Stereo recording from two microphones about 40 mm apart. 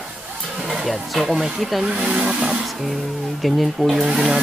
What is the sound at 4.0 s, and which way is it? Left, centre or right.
Speech, centre.